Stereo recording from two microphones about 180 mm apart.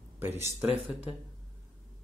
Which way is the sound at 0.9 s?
10° right (ahead or behind).